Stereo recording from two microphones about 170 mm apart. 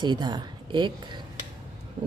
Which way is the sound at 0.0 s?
25° right (ahead or behind).